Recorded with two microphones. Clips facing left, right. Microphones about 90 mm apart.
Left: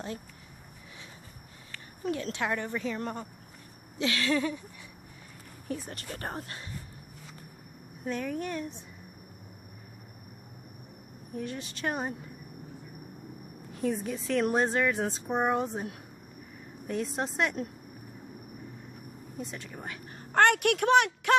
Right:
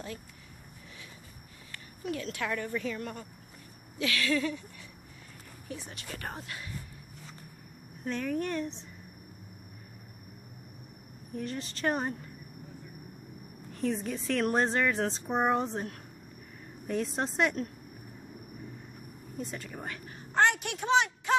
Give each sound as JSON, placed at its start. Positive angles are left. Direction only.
{"t": 2.0, "sound": "a woman's voice", "side_deg": 30}
{"t": 3.0, "sound": "a woman's voice", "side_deg": 30}
{"t": 5.7, "sound": "speech", "side_deg": 40}
{"t": 8.0, "sound": "speech", "side_deg": 5}
{"t": 11.3, "sound": "speech", "side_deg": 5}
{"t": 13.7, "sound": "speech", "side_deg": 5}
{"t": 19.3, "sound": "speech", "side_deg": 0}
{"t": 20.3, "sound": "speech", "side_deg": 60}